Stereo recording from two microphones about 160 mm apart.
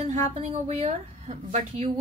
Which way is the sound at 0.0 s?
40° right (ahead or behind).